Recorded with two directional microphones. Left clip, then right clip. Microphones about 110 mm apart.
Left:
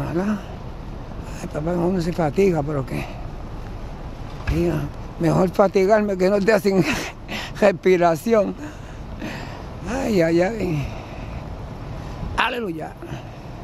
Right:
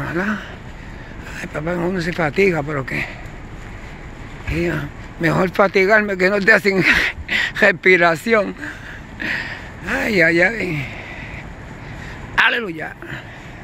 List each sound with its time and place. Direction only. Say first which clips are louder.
0.0 s speech: right 3 dB; 30° left (ahead or behind)
1.7 s speech: right 1 dB; 40° left (ahead or behind)
4.6 s speech: right 1 dB; 35° left (ahead or behind)
9.2 s a sound: right 10 dB; 30° left (ahead or behind)
12.4 s speech: right 6 dB; 35° left (ahead or behind)